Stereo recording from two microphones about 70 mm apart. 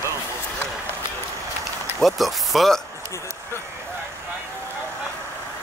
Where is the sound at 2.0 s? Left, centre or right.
Centre.